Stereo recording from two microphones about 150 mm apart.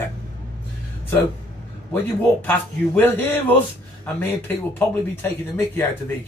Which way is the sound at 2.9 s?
15° left (ahead or behind).